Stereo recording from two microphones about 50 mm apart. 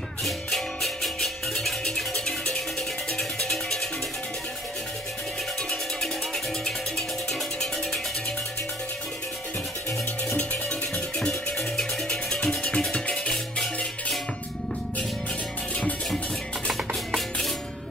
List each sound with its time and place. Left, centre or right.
0.2 s music: centre
5.9 s music: centre
10.3 s music: centre